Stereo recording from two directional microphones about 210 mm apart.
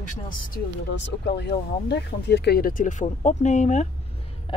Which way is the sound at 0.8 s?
55° left (ahead or behind).